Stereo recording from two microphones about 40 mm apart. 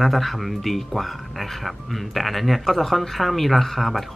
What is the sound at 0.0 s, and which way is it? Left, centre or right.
Speech, centre.